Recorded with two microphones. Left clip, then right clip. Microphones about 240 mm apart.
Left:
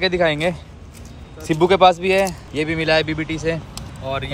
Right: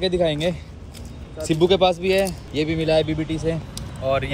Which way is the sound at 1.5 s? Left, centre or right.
Centre.